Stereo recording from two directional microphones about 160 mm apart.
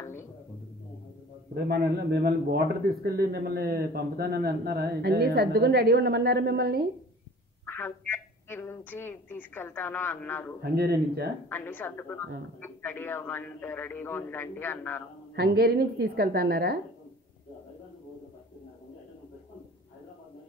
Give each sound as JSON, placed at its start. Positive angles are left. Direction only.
{"t": 1.5, "sound": "a man's voice", "side_deg": -90}
{"t": 7.6, "sound": "a woman's voice", "side_deg": 10}
{"t": 10.6, "sound": "a woman's voice", "side_deg": -75}
{"t": 11.4, "sound": "a man's voice", "side_deg": 10}
{"t": 15.3, "sound": "a woman's voice", "side_deg": -75}